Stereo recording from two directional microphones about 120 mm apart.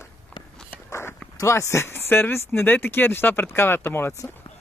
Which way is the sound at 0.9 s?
20° left (ahead or behind).